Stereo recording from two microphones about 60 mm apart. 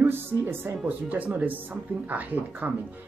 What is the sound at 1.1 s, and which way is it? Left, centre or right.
A woman's voice, right.